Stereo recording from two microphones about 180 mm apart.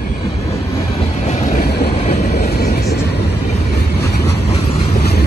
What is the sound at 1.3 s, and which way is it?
Vehicle, 40° left (ahead or behind).